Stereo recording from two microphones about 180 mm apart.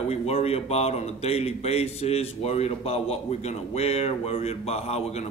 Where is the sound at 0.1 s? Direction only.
35° left (ahead or behind).